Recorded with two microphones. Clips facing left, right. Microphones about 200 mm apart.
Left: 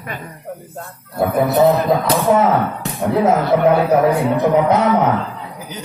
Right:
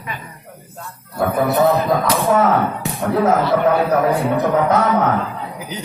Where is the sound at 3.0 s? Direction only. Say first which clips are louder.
Left 1 dB; 15° left (ahead or behind).